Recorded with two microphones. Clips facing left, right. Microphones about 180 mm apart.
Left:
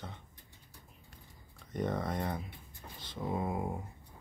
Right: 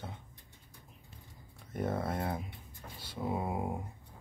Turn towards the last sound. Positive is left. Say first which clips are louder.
# even
turn(degrees=-10)  # may be behind; listen again after turning